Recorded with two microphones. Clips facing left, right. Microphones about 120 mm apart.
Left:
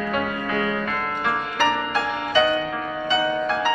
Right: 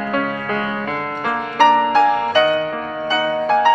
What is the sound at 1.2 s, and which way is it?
Music, 55° right (ahead or behind).